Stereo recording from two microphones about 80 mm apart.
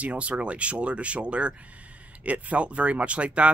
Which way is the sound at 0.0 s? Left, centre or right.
Centre.